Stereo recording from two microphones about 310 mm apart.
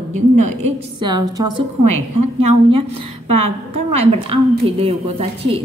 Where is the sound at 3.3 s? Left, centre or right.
Right.